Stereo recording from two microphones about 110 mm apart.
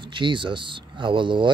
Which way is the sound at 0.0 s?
45° right (ahead or behind).